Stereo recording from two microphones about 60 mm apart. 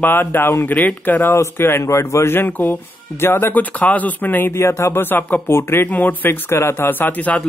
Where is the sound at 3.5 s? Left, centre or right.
Left.